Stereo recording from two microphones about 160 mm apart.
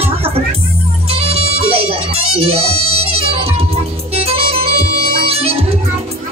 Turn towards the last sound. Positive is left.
turn(degrees=-40)  # may be behind; listen again after turning